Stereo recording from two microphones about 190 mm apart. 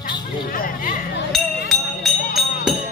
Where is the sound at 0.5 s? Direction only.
50° left (ahead or behind).